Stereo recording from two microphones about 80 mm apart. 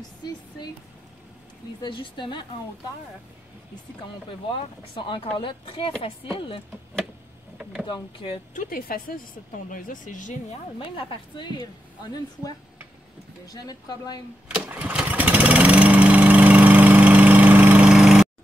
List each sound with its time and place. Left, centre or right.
1.8 s a woman's voice: left
4.3 s speech: left
7.8 s speech: left
10.8 s a woman's voice: left
14.5 s lawn mower: centre
17.8 s lawn mower: centre